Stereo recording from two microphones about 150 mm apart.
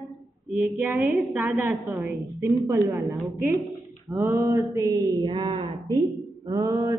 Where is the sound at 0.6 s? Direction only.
Centre (ahead or behind).